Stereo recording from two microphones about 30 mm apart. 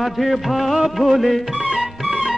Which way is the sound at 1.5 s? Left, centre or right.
Right.